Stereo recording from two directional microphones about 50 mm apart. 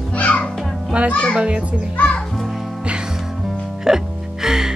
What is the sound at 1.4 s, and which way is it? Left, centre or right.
Speech, right.